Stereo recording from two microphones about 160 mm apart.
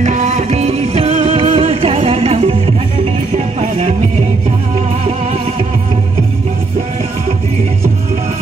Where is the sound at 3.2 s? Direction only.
45° right (ahead or behind).